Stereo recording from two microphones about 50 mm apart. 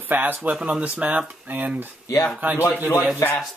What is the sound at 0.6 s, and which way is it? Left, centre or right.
Speech, centre.